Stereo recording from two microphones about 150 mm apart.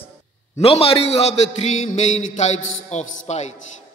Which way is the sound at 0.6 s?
40° left (ahead or behind).